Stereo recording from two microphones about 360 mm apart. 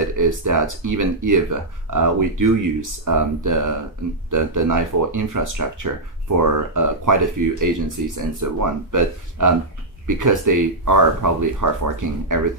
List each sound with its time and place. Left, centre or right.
0.0 s speech: right